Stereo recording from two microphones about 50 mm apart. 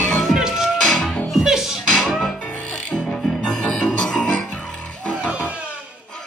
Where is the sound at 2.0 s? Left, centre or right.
Centre.